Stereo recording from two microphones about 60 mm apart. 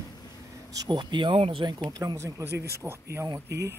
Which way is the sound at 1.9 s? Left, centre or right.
Right.